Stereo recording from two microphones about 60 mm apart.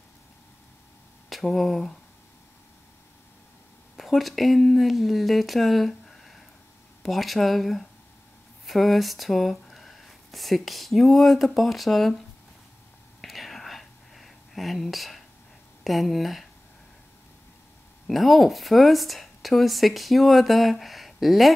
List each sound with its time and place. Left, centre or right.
1.3 s speech: centre
3.9 s speech: centre
13.2 s whispering: centre
15.8 s speech: centre
18.0 s speech: centre